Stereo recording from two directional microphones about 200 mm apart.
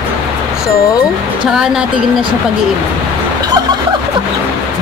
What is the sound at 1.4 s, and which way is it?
Speech, 5° right (ahead or behind).